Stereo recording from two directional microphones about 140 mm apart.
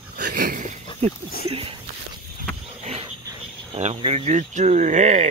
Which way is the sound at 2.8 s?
45° right (ahead or behind).